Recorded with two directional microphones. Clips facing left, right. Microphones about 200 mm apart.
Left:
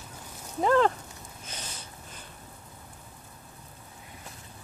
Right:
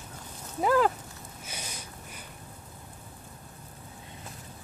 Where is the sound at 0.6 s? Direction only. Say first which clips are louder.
Left 1 dB; 5° right (ahead or behind).